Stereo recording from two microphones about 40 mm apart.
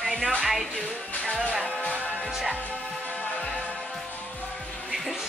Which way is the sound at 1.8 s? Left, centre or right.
Left.